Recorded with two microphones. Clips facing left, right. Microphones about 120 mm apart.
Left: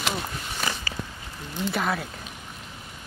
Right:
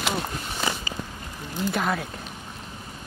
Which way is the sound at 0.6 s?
20° right (ahead or behind).